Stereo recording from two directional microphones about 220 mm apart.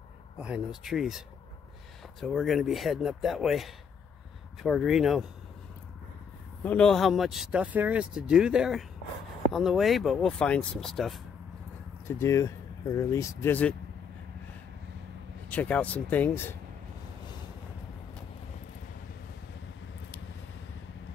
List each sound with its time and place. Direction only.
0.4 s speech: 5° right (ahead or behind)
6.6 s speech: 5° left (ahead or behind)
12.1 s speech: 15° left (ahead or behind)
15.5 s speech: 5° left (ahead or behind)